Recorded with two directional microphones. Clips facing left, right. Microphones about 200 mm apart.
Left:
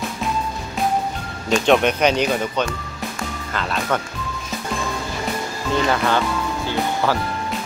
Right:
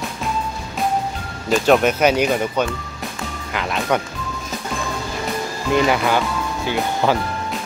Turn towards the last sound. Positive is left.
turn(degrees=-15)  # may be behind; listen again after turning